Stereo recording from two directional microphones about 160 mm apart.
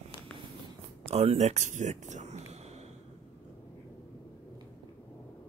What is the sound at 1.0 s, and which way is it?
Speech, 40° right (ahead or behind).